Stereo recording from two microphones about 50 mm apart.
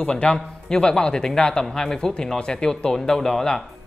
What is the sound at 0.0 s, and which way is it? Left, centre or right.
A man's voice, centre.